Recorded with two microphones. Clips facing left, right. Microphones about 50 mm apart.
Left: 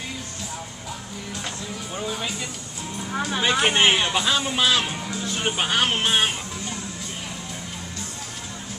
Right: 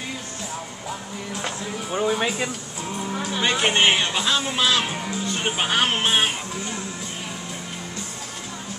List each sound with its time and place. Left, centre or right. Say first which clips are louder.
1.4 s speech: right 5 dB; right
3.3 s speech: even; centre
4.8 s music: right 2 dB; centre
5.2 s speech: even; centre